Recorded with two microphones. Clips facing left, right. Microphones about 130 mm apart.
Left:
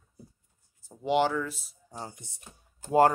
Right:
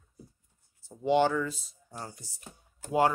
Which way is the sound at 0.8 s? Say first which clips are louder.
Right 1 dB; 15° left (ahead or behind).